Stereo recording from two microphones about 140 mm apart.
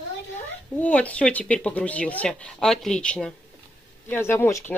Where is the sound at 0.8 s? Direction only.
10° left (ahead or behind).